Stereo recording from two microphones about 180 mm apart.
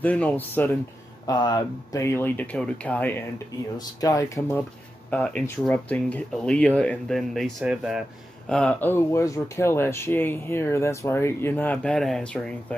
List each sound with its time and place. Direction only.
0.0 s speech: 10° left (ahead or behind)
1.2 s speech: 20° left (ahead or behind)
3.7 s speech: 20° left (ahead or behind); by 8.0 s 5° right (ahead or behind)
8.5 s speech: 5° left (ahead or behind)